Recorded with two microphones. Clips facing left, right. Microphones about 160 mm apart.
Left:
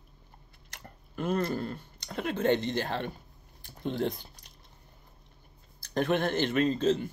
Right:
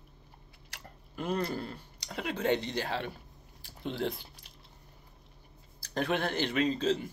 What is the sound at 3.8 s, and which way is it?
Speech, 50° left (ahead or behind).